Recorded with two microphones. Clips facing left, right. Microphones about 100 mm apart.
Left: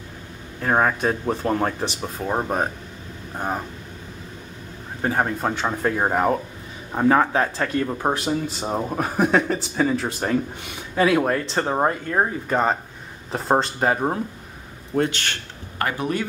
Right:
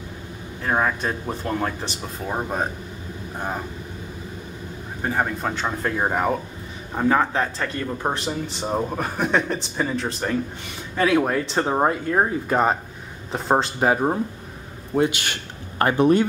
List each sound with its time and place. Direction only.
0.6 s speech: 10° left (ahead or behind)
5.0 s a man's voice: 10° left (ahead or behind); by 15.3 s 10° right (ahead or behind)
15.8 s speech: 30° right (ahead or behind)